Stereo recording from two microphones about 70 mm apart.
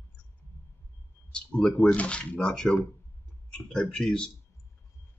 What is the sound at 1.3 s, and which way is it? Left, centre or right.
Speech, centre.